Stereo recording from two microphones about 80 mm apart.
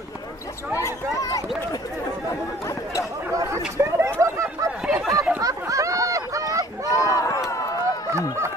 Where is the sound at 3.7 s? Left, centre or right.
Right.